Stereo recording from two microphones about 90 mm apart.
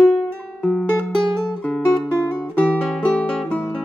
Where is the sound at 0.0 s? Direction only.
5° left (ahead or behind).